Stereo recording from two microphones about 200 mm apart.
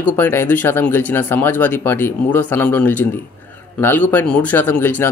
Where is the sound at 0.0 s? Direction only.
10° left (ahead or behind).